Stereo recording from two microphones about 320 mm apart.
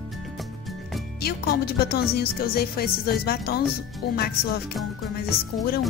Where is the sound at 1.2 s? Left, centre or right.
Left.